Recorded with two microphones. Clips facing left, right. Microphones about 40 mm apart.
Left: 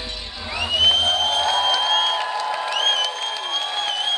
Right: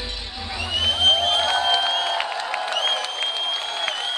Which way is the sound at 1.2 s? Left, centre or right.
Right.